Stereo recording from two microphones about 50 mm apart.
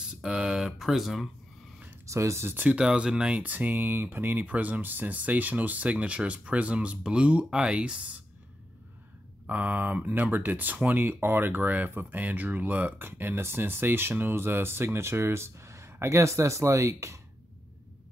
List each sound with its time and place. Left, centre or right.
0.0 s speech: centre
2.0 s speech: right
2.5 s speech: right
2.8 s speech: centre; by 4.5 s right
4.5 s speech: right
9.5 s speech: right